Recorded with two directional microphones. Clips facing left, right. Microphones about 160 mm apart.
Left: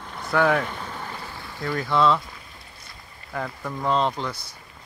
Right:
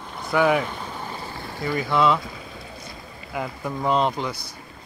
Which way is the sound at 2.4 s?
90° right.